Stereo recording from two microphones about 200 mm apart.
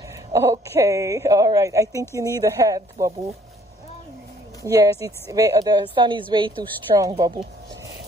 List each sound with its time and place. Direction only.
0.3 s speech: 15° right (ahead or behind)
4.6 s speech: 15° right (ahead or behind)